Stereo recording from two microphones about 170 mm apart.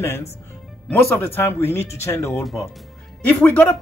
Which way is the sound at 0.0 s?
15° left (ahead or behind).